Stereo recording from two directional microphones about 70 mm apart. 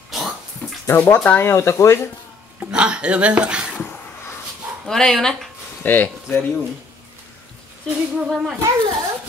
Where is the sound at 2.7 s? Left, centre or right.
Centre.